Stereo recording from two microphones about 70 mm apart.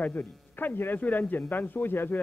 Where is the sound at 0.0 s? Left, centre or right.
Left.